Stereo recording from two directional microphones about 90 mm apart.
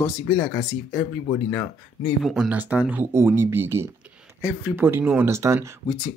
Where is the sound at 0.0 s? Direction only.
40° left (ahead or behind).